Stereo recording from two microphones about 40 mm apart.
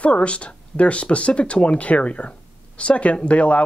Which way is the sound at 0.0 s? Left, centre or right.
Left.